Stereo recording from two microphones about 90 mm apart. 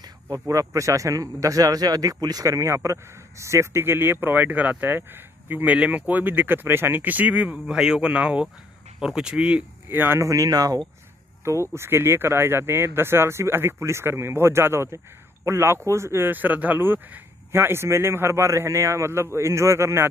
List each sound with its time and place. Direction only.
0.3 s a man's voice: 35° right (ahead or behind); by 7.5 s 20° right (ahead or behind)
7.5 s speech: 5° right (ahead or behind)
9.8 s a man's voice: 25° right (ahead or behind)
10.2 s speech: 40° right (ahead or behind)
11.4 s a man's voice: 30° right (ahead or behind)